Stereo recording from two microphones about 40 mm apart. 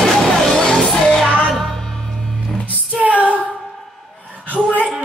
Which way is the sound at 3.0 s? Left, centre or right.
Right.